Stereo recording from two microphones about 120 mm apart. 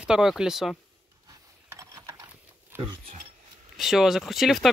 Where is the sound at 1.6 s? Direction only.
25° right (ahead or behind).